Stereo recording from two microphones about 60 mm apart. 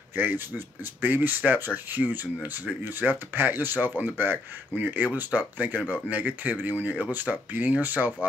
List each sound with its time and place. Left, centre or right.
0.1 s speech: right